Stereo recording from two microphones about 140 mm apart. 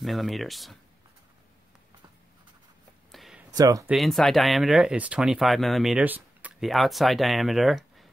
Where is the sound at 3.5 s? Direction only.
25° right (ahead or behind).